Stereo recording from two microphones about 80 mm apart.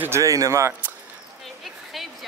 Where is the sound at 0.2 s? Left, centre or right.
Right.